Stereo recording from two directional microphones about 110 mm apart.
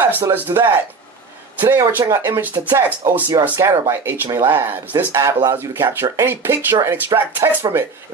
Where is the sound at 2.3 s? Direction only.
15° right (ahead or behind).